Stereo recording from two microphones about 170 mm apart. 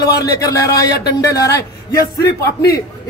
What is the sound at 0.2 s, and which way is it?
A man's voice, 20° left (ahead or behind).